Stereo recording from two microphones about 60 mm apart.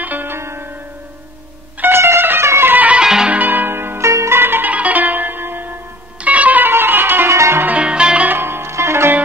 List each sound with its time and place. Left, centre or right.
0.0 s music: right
0.4 s music: right
1.8 s music: right
2.7 s music: right
3.0 s music: centre
3.3 s zither: right
4.1 s music: right
4.4 s music: right
6.2 s music: right
6.7 s music: right
7.3 s music: right
7.6 s music: right
8.3 s music: right